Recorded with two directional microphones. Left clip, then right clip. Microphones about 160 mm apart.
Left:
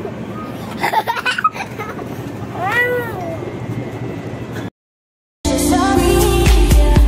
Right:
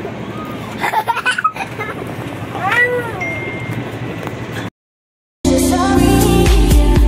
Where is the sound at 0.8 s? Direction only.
30° left (ahead or behind).